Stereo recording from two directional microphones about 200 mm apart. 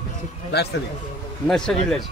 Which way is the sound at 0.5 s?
55° left (ahead or behind).